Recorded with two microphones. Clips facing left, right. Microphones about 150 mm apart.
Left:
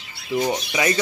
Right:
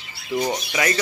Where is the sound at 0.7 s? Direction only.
15° left (ahead or behind).